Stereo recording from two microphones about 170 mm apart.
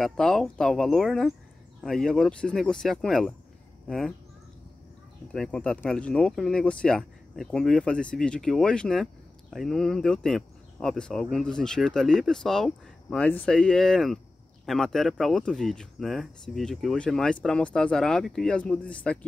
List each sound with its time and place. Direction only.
0.0 s speech: centre (ahead or behind)
5.3 s speech: 5° left (ahead or behind)